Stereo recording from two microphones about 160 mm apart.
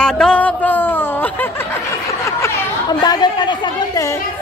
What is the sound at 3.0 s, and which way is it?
Speech, 30° left (ahead or behind).